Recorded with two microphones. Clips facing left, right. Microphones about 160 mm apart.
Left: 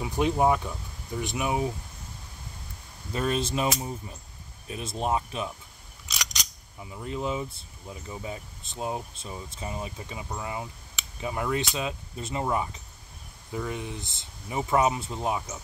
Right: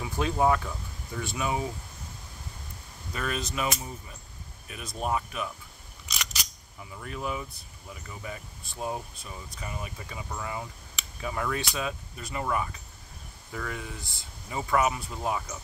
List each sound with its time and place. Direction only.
0.0 s speech: 20° left (ahead or behind)
3.1 s speech: 30° left (ahead or behind)
4.6 s speech: 25° left (ahead or behind)
6.8 s speech: 20° left (ahead or behind)